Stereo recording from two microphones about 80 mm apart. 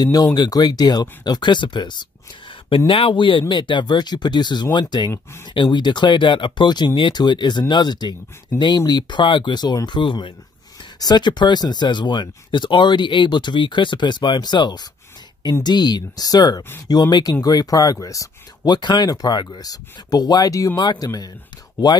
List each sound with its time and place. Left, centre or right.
0.0 s speech: left
2.9 s speech: left
5.1 s speech: left
5.5 s speech: left
11.0 s speech: left
20.8 s speech: left